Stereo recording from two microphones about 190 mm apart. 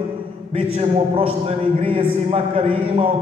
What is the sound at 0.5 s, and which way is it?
A man's voice, 30° right (ahead or behind).